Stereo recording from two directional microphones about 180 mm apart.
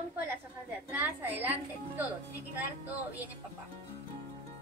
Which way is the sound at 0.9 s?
10° right (ahead or behind).